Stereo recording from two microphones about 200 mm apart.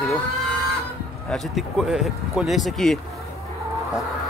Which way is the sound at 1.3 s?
Centre (ahead or behind).